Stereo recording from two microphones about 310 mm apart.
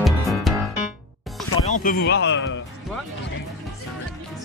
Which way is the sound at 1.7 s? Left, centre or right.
Left.